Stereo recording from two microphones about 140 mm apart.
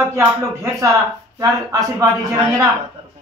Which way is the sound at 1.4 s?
25° right (ahead or behind).